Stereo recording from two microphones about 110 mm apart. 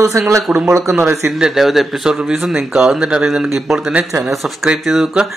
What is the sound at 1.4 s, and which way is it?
Speech, centre (ahead or behind).